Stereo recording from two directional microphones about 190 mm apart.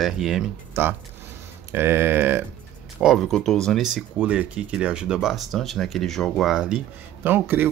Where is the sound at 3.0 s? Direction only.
Centre (ahead or behind).